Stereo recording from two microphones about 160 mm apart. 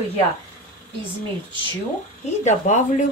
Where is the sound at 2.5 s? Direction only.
50° left (ahead or behind).